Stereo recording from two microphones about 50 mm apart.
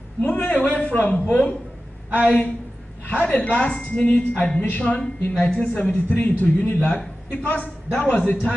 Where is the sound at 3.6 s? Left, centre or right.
Left.